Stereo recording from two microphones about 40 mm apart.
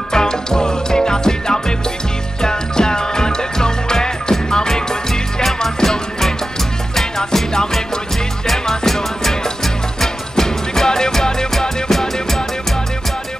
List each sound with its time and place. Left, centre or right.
0.1 s music: centre